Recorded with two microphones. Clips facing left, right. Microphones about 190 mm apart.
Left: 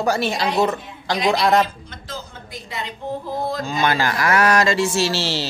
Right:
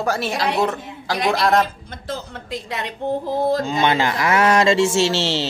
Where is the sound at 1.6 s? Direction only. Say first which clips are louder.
Right 6 dB; 55° right (ahead or behind); by 2.9 s 75° right (ahead or behind).